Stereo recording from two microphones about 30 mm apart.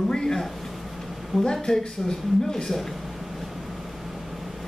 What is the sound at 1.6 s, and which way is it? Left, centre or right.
Speech, centre.